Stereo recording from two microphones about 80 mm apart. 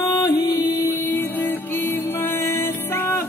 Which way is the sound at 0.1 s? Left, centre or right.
Left.